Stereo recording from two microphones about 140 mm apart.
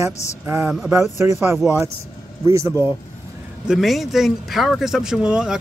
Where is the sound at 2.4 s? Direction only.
20° right (ahead or behind).